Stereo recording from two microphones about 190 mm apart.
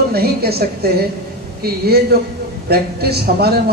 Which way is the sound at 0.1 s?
55° right (ahead or behind).